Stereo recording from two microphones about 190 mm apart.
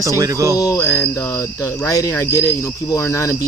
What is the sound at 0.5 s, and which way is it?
Speech, 20° left (ahead or behind).